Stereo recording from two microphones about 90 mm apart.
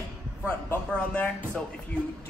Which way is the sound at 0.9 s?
10° left (ahead or behind).